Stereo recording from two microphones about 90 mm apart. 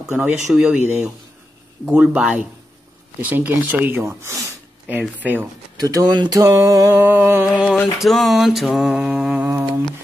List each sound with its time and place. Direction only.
0.1 s speech: 15° right (ahead or behind)
4.0 s music: 35° right (ahead or behind)
4.8 s speech: 20° right (ahead or behind)
5.8 s speech: 45° right (ahead or behind)
6.3 s music: 35° right (ahead or behind)
6.9 s speech: 25° right (ahead or behind)
7.6 s a sound: 20° left (ahead or behind)
8.0 s a sound: centre (ahead or behind)